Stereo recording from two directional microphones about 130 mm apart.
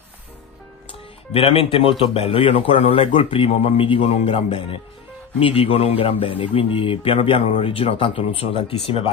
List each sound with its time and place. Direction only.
1.3 s speech: 45° left (ahead or behind)